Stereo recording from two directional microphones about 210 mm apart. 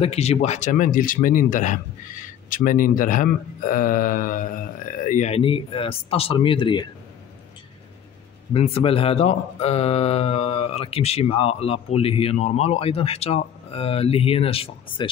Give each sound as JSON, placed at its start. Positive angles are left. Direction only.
{"t": 0.0, "sound": "speech", "side_deg": 30}
{"t": 8.5, "sound": "speech", "side_deg": 25}